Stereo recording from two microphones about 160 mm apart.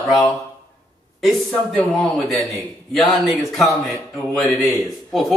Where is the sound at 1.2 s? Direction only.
Centre (ahead or behind).